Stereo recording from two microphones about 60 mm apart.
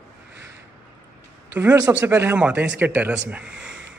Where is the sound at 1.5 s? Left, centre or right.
Right.